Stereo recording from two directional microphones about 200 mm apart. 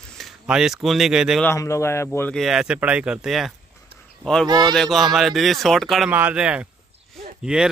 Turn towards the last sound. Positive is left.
turn(degrees=-5)  # may be behind; listen again after turning